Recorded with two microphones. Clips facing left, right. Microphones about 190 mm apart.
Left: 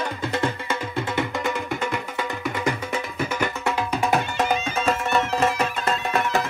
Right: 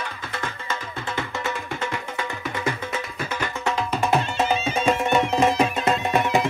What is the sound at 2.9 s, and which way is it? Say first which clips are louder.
Music: left 3 dB; 10° left (ahead or behind).